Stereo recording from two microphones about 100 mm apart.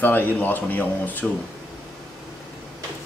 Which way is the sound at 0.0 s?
20° left (ahead or behind).